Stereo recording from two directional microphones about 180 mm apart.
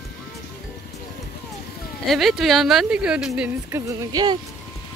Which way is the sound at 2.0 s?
Centre (ahead or behind).